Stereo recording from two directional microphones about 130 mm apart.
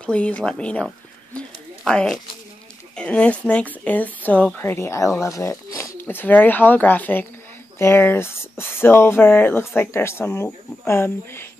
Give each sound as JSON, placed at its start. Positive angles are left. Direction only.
{"t": 0.0, "sound": "speech", "side_deg": 10}
{"t": 1.9, "sound": "speech", "side_deg": 5}